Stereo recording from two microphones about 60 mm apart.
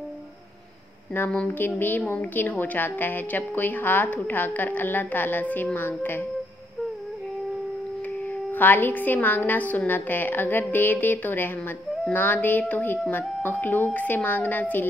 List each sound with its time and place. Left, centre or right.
1.8 s a woman's voice: left
8.5 s a woman's voice: left